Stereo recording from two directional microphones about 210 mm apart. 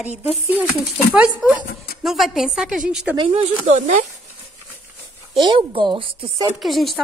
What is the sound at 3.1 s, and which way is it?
Speech, 25° right (ahead or behind).